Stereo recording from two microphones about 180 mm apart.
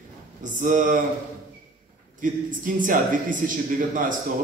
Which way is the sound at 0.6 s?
45° right (ahead or behind).